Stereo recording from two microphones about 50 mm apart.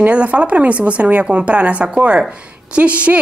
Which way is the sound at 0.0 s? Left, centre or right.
Right.